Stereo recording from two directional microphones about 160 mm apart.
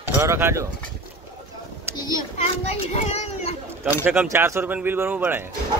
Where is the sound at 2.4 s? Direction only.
40° left (ahead or behind).